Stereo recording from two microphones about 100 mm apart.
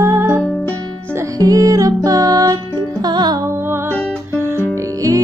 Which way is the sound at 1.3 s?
35° right (ahead or behind).